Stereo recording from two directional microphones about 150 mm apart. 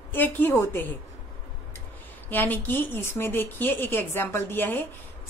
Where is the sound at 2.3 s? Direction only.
15° left (ahead or behind).